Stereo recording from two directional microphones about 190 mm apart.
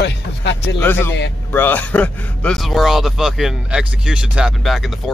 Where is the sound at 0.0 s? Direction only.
65° left (ahead or behind).